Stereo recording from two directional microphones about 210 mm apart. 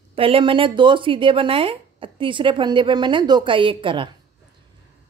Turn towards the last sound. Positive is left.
turn(degrees=-25)  # may be behind; listen again after turning